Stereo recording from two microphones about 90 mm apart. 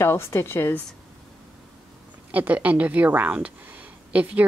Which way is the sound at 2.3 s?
15° right (ahead or behind).